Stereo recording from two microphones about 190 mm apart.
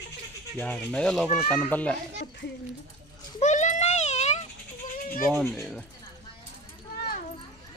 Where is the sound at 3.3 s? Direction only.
40° left (ahead or behind).